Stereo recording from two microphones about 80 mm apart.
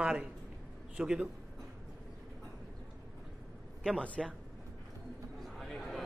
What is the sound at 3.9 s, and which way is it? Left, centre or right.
Speech, centre.